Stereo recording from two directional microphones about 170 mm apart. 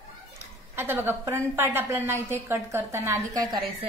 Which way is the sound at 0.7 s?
15° right (ahead or behind).